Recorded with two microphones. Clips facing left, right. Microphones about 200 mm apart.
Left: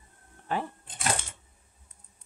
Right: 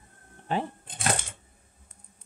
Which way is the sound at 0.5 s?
25° right (ahead or behind).